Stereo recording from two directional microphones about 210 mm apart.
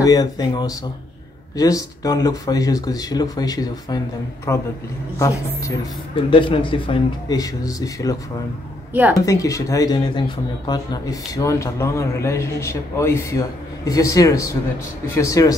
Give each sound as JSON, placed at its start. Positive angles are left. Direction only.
{"t": 0.0, "sound": "speech", "side_deg": 15}
{"t": 6.3, "sound": "speech", "side_deg": 25}
{"t": 9.2, "sound": "speech", "side_deg": 15}